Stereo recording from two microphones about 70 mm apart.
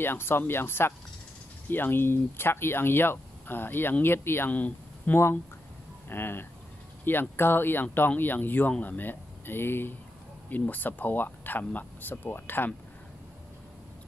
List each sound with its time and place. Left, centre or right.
0.0 s speech: left
4.5 s speech: left
5.1 s speech: left